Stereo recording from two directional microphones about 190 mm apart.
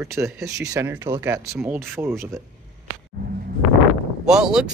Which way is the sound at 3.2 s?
50° right (ahead or behind).